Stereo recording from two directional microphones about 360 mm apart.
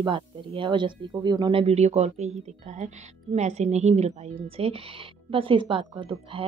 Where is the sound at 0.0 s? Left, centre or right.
Centre.